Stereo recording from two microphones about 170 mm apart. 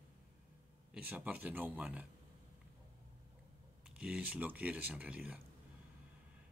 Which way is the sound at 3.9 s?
5° right (ahead or behind).